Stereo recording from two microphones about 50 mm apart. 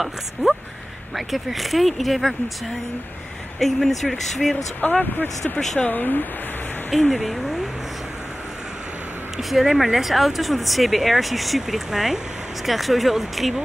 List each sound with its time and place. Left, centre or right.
0.0 s speech: centre
3.5 s speech: centre
5.1 s speech: left
6.9 s speech: centre
9.4 s speech: centre